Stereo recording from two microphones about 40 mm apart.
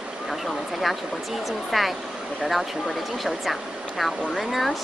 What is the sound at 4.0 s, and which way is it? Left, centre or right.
Speech, centre.